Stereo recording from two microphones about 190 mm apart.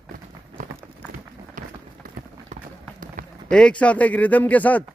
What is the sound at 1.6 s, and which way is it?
Run, 40° right (ahead or behind).